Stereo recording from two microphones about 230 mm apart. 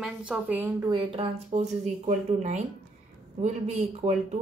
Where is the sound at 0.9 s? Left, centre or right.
Right.